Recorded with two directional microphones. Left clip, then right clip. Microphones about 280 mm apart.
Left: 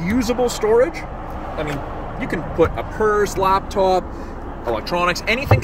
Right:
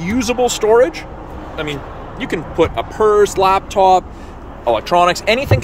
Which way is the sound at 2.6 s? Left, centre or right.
Centre.